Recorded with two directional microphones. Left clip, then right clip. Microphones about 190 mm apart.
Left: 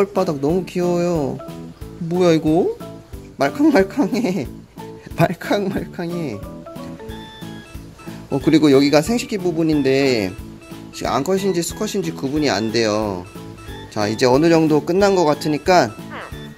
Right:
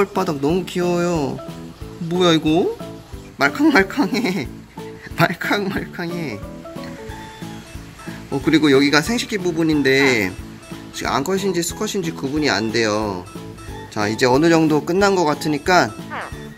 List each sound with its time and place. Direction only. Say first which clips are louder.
0.0 s speech: left 1 dB; 20° left (ahead or behind)
8.5 s speech: left 1 dB; 30° left (ahead or behind)